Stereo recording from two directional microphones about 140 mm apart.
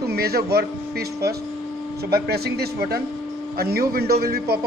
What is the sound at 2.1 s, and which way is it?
Speech, 90° right.